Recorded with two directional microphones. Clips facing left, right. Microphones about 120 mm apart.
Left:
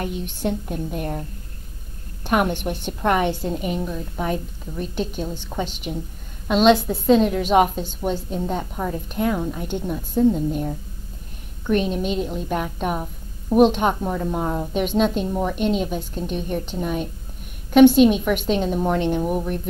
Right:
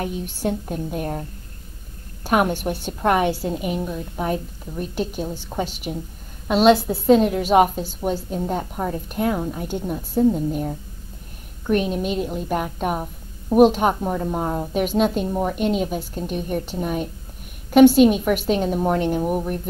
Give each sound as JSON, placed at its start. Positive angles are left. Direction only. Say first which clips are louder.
{"t": 0.0, "sound": "a woman's voice", "louder": "right 1 dB", "side_deg": -15}
{"t": 2.6, "sound": "a woman's voice", "louder": "right 1 dB", "side_deg": -20}
{"t": 11.6, "sound": "a woman's voice", "louder": "even", "side_deg": -10}